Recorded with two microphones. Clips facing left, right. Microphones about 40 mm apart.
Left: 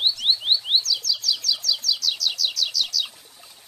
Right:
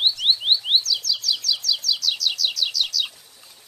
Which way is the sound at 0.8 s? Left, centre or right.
Centre.